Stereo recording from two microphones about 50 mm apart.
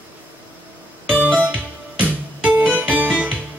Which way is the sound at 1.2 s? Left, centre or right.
Right.